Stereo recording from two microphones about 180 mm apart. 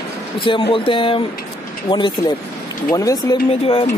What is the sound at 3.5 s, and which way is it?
Speech, 30° left (ahead or behind).